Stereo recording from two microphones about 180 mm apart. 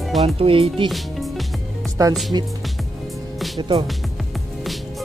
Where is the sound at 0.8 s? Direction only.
Centre (ahead or behind).